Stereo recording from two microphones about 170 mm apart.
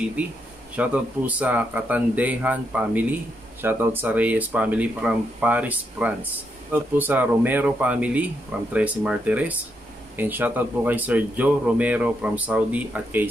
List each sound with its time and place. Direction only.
0.7 s speech: 10° right (ahead or behind)